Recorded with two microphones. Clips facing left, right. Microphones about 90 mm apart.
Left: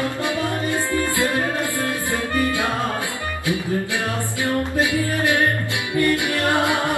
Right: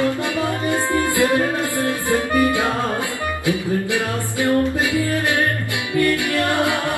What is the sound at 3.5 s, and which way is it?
Music, 20° left (ahead or behind).